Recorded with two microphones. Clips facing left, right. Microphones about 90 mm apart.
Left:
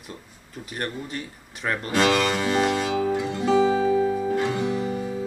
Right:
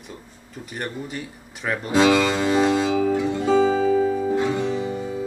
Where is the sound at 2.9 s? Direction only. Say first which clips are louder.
Right 3 dB; 15° left (ahead or behind).